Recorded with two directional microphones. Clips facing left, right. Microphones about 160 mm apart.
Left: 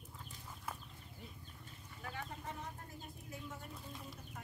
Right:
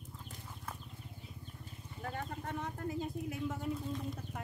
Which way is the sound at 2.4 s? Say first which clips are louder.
Right 8 dB; 75° right (ahead or behind).